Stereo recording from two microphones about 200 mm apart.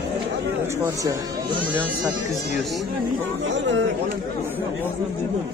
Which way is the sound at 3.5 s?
65° right (ahead or behind).